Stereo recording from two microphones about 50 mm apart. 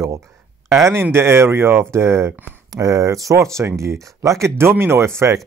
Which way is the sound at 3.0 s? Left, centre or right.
Right.